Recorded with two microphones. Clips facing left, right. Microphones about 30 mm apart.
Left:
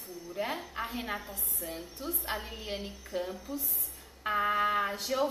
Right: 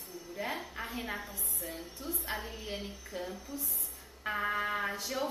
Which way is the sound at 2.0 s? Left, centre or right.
Left.